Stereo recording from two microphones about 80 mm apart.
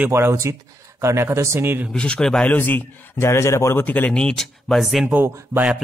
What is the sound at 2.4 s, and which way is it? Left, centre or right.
A man's voice, left.